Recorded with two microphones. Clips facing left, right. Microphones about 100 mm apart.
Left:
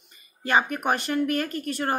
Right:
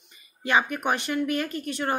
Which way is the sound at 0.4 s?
40° left (ahead or behind).